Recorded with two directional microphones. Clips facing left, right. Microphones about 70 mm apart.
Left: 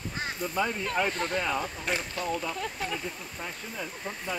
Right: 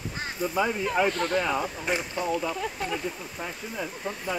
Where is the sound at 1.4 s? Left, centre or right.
Centre.